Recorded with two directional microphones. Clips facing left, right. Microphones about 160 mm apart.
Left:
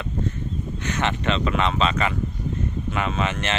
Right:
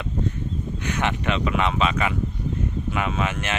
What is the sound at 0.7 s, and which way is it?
Speech, 10° right (ahead or behind).